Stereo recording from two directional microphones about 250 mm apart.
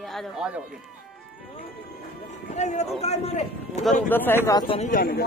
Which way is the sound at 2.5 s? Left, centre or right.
Left.